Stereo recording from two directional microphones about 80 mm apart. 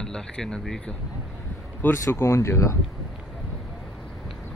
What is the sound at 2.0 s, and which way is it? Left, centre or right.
Speech, left.